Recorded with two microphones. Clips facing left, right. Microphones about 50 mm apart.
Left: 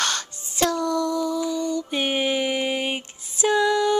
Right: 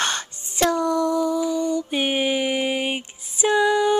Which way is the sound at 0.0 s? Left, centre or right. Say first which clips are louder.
Right 1 dB; right.